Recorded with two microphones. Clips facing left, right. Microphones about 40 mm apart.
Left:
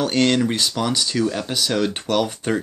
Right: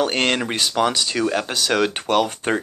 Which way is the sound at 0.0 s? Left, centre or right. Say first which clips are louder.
Left 2 dB; right.